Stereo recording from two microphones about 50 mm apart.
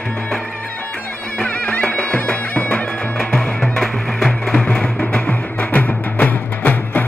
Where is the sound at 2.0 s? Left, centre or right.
Left.